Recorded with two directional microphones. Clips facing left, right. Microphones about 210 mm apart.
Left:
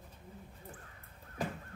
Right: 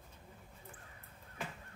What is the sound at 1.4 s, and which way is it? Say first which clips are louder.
Fowl: left 7 dB; 35° left (ahead or behind).